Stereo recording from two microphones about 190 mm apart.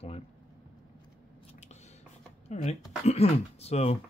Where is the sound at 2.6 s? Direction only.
35° left (ahead or behind).